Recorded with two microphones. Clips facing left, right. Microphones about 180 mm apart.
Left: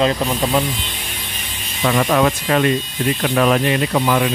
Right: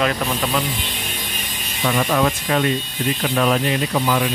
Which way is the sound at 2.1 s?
65° left (ahead or behind).